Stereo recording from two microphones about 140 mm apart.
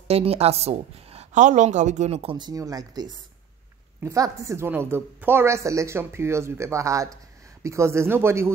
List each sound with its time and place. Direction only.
0.1 s a woman's voice: 45° right (ahead or behind)
2.3 s a woman's voice: 30° right (ahead or behind)